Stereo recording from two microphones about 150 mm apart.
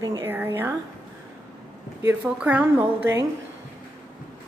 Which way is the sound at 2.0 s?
15° right (ahead or behind).